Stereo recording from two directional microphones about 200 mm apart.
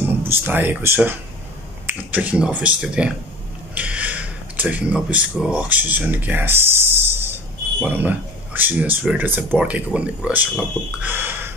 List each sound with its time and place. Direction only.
0.3 s speech: 10° right (ahead or behind)